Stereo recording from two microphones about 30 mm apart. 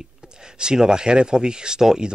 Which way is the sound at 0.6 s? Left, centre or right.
Right.